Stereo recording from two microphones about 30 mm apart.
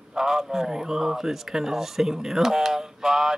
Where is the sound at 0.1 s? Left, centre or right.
Centre.